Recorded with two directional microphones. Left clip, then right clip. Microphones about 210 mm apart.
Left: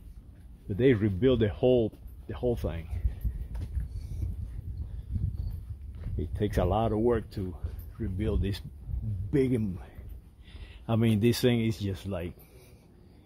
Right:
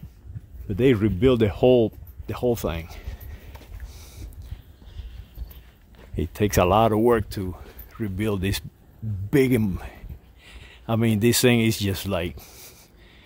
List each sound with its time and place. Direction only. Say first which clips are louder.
0.7 s speech: right 5 dB; 45° right (ahead or behind)
6.1 s speech: right 9 dB; 35° right (ahead or behind)
10.4 s speech: right 6 dB; 20° right (ahead or behind); by 12.7 s 50° right (ahead or behind)